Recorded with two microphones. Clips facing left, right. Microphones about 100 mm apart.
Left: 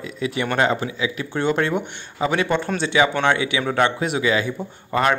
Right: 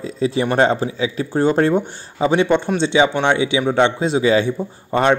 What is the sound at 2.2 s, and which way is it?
A man's voice, 25° right (ahead or behind).